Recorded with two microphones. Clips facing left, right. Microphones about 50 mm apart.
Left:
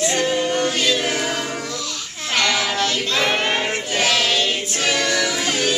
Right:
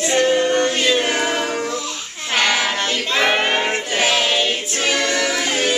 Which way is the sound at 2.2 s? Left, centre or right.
Centre.